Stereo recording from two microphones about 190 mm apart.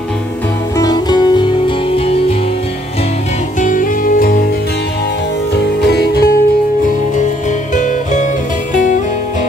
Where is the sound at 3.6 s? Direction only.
45° left (ahead or behind).